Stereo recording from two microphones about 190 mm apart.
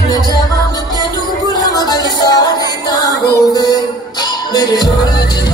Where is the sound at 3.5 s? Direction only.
20° left (ahead or behind).